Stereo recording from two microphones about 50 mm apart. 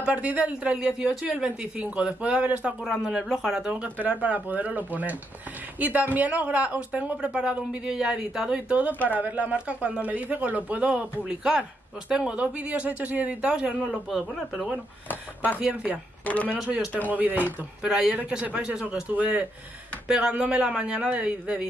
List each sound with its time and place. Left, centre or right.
0.0 s a woman's voice: right; by 3.7 s centre
3.8 s a man's voice: right
8.6 s a woman's voice: right
10.9 s a woman's voice: centre
15.6 s a woman's voice: right
16.3 s speech: left
17.1 s a man's voice: right
17.8 s a woman's voice: right
19.0 s a woman's voice: right
20.1 s a woman's voice: centre